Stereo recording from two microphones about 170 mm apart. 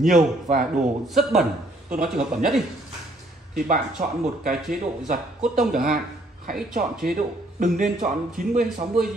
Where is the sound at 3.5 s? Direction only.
55° right (ahead or behind).